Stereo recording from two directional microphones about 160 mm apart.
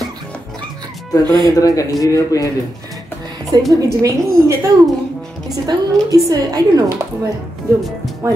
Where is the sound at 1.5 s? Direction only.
20° left (ahead or behind).